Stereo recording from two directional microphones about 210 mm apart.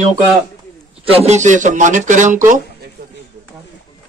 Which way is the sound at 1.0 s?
30° right (ahead or behind).